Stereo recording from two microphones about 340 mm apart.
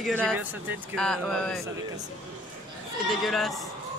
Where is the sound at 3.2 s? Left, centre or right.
Centre.